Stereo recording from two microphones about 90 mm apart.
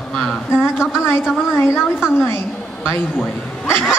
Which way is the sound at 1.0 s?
25° left (ahead or behind).